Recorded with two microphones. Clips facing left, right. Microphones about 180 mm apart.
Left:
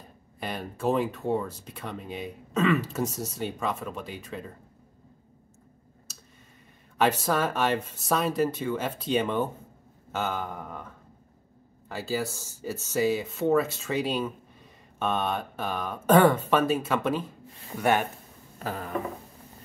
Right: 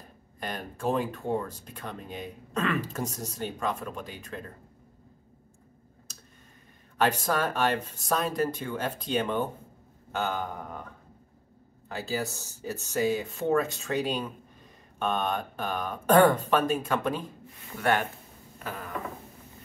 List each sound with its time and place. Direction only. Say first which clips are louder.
0.4 s speech: left 2 dB; 10° left (ahead or behind)
7.0 s speech: left 2 dB; 5° left (ahead or behind)
11.9 s speech: left 2 dB; centre (ahead or behind)
17.7 s speech: left 2 dB; 20° left (ahead or behind)
18.6 s a sound: left 4 dB; 30° left (ahead or behind)